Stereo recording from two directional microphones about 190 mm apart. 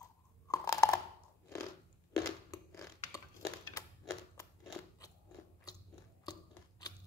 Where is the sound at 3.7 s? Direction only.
20° left (ahead or behind).